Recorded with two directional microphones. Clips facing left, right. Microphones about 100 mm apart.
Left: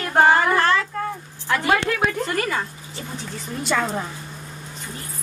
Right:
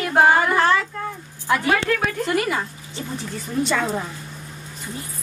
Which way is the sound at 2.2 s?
10° right (ahead or behind).